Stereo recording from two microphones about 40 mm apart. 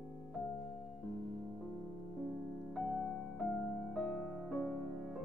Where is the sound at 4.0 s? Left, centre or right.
Centre.